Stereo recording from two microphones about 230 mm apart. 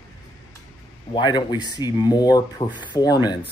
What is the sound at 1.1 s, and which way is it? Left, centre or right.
A man's voice, centre.